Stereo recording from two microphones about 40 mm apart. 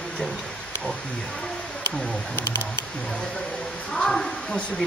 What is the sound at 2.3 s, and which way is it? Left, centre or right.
Speech, left.